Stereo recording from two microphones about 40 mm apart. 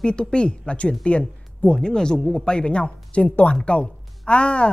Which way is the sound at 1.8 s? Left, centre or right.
Centre.